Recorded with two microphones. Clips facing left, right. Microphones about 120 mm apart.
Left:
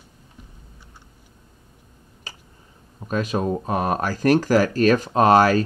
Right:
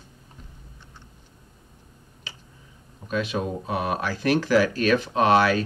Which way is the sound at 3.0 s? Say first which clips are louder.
Left 3 dB; 40° left (ahead or behind).